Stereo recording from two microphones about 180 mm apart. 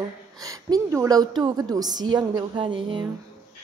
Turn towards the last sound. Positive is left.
turn(degrees=-25)  # may be behind; listen again after turning